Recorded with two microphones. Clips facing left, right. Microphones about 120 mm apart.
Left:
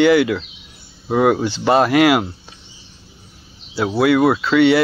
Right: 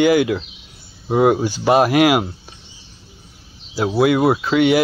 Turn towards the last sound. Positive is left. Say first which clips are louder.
# left 1 dB
turn(degrees=-15)  # may be behind; listen again after turning